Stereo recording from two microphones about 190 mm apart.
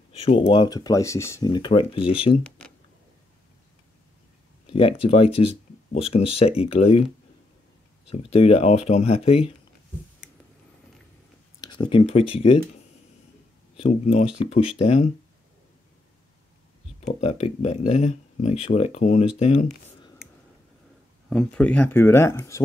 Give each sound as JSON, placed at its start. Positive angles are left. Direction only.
{"t": 0.1, "sound": "speech", "side_deg": 30}
{"t": 4.6, "sound": "speech", "side_deg": 30}
{"t": 8.1, "sound": "speech", "side_deg": 30}
{"t": 11.6, "sound": "speech", "side_deg": 25}
{"t": 13.7, "sound": "speech", "side_deg": 35}
{"t": 17.0, "sound": "speech", "side_deg": 35}
{"t": 21.3, "sound": "speech", "side_deg": 5}